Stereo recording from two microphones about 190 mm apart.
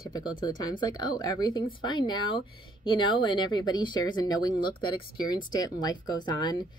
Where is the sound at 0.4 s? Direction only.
20° left (ahead or behind).